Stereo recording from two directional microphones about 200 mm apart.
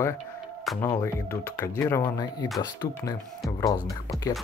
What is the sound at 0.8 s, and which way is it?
Speech, 15° left (ahead or behind).